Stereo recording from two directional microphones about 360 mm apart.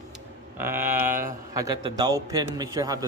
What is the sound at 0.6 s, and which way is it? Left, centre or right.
Speech, centre.